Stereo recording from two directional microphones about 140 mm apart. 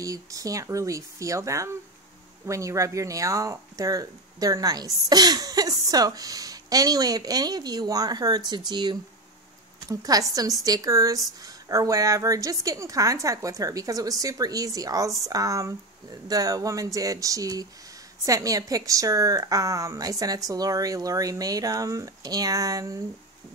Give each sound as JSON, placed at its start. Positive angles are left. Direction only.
{"t": 0.0, "sound": "speech", "side_deg": -25}